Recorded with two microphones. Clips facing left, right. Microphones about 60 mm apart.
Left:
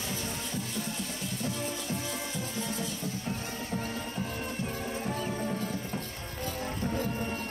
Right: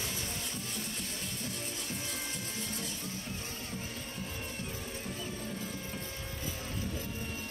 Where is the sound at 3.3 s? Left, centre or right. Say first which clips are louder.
Left 7 dB; left.